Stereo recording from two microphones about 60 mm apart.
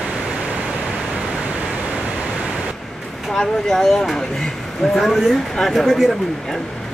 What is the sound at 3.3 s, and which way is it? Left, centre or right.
Speech, centre.